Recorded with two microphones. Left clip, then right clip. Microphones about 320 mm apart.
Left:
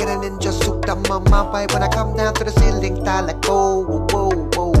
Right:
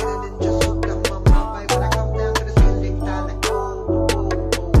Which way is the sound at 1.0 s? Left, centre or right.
Centre.